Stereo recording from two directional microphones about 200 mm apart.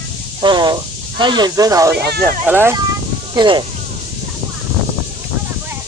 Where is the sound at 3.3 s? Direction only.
20° right (ahead or behind).